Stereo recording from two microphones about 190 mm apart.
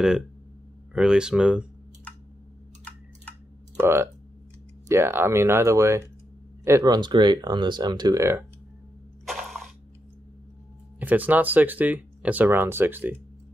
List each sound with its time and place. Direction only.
0.9 s speech: 5° right (ahead or behind)
2.8 s typing: 5° left (ahead or behind)
3.8 s speech: 15° right (ahead or behind)
9.2 s a sound: centre (ahead or behind)
11.0 s speech: 10° right (ahead or behind)